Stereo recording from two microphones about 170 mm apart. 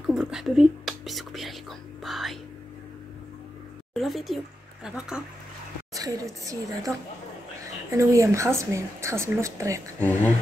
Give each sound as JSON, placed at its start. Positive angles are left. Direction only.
{"t": 0.0, "sound": "whispering", "side_deg": -5}
{"t": 3.9, "sound": "speech", "side_deg": 0}
{"t": 5.9, "sound": "a woman's voice", "side_deg": -20}
{"t": 7.9, "sound": "a woman's voice", "side_deg": -20}
{"t": 9.9, "sound": "speech", "side_deg": 10}